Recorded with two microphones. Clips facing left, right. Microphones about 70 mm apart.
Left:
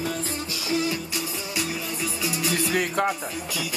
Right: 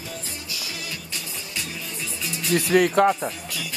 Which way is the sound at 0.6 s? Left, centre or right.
Left.